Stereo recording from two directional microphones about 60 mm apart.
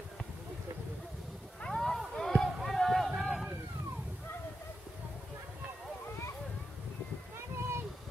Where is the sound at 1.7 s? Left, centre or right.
Centre.